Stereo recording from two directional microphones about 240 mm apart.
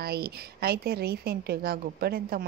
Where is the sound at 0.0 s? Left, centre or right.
Right.